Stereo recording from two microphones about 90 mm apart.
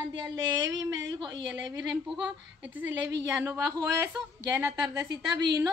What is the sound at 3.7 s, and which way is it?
Speech, 35° right (ahead or behind).